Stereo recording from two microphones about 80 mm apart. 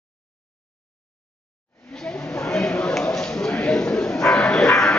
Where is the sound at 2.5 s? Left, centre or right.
Centre.